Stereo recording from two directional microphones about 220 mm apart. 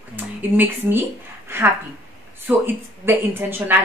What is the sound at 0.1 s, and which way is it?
Speech, 10° right (ahead or behind).